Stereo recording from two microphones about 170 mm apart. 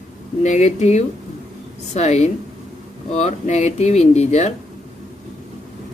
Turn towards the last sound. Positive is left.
turn(degrees=40)  # may be behind; listen again after turning